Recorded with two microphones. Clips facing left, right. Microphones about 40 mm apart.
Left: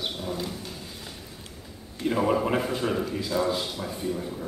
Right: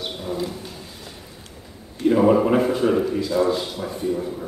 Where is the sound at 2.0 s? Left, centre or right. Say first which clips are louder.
Right 8 dB; centre.